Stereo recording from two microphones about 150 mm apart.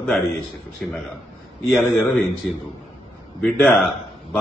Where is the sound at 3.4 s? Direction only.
10° left (ahead or behind).